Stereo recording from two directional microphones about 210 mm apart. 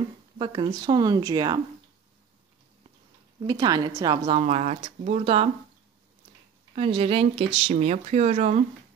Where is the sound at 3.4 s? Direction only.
20° right (ahead or behind).